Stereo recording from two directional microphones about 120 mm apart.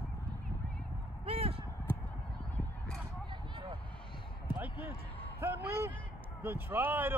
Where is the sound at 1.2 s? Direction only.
55° right (ahead or behind).